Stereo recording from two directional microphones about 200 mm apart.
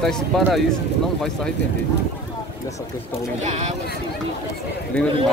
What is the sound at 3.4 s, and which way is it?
Speech, 35° right (ahead or behind).